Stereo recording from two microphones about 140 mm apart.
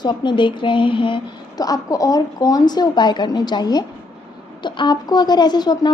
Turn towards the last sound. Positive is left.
turn(degrees=30)  # may be behind; listen again after turning